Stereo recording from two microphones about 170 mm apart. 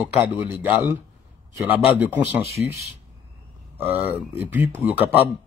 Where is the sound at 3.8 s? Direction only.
10° right (ahead or behind).